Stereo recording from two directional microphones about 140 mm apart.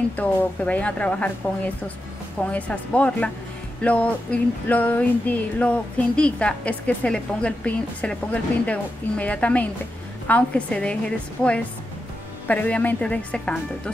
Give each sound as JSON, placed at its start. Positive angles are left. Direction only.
{"t": 0.1, "sound": "music", "side_deg": 10}
{"t": 12.4, "sound": "music", "side_deg": 10}